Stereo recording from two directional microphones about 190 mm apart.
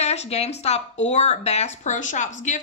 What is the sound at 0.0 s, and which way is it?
Speech, 35° left (ahead or behind).